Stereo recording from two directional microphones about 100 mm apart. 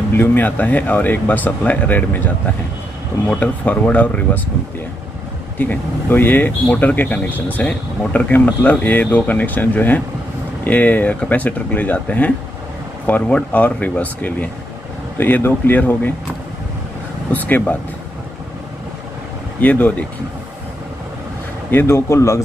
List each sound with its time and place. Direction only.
0.1 s speech: 20° left (ahead or behind)
5.6 s speech: 20° left (ahead or behind)
17.3 s speech: 15° left (ahead or behind)
19.6 s speech: 15° left (ahead or behind)
21.6 s speech: 25° left (ahead or behind)